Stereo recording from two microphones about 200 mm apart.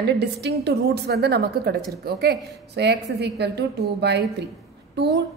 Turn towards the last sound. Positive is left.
turn(degrees=-55)  # may be behind; listen again after turning